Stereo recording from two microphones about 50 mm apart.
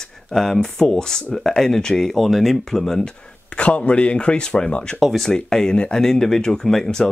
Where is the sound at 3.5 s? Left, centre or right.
Left.